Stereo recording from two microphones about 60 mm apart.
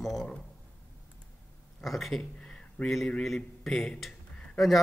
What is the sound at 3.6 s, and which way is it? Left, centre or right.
Speech, centre.